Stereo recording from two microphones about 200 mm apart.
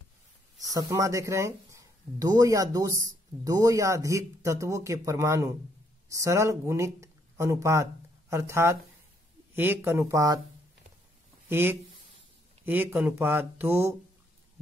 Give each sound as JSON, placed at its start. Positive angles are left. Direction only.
{"t": 0.6, "sound": "speech", "side_deg": -15}
{"t": 11.4, "sound": "speech", "side_deg": -10}